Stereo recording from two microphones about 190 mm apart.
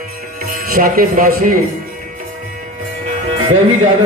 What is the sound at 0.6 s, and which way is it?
Speech, 50° right (ahead or behind).